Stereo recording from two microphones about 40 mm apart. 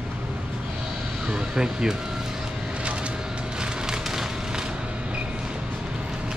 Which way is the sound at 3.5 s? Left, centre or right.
Centre.